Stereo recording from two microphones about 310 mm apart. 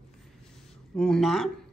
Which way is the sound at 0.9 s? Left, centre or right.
Centre.